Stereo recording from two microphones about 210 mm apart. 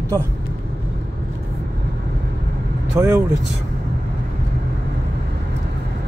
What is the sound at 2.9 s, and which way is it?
Speech, 15° right (ahead or behind).